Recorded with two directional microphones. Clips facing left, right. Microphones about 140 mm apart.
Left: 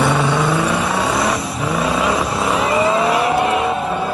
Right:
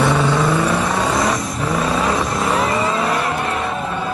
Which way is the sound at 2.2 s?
30° left (ahead or behind).